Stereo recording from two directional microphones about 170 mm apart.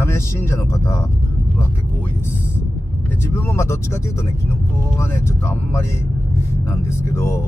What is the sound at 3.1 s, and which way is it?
Speech, 15° left (ahead or behind).